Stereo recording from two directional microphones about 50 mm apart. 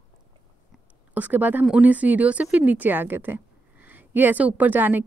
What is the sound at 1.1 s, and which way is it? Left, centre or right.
A woman's voice, right.